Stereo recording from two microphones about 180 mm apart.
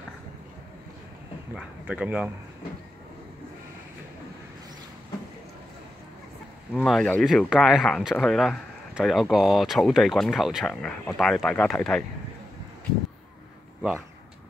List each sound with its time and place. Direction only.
1.5 s speech: 5° right (ahead or behind)
6.7 s speech: 5° left (ahead or behind)